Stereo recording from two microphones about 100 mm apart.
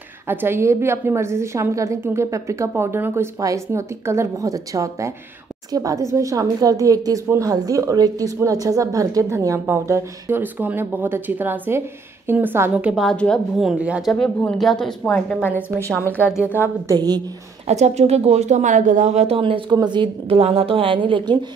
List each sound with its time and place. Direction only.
0.3 s a woman's voice: 20° right (ahead or behind)
13.0 s speech: 10° left (ahead or behind)
13.7 s speech: 10° right (ahead or behind)
14.0 s speech: 5° left (ahead or behind)
15.0 s a woman's voice: 20° left (ahead or behind)
16.8 s speech: 40° right (ahead or behind)
17.6 s speech: 90° right
19.1 s a woman's voice: 80° right; by 20.3 s 50° right (ahead or behind)
20.3 s a woman's voice: 75° right (ahead or behind); by 21.4 s 55° right (ahead or behind)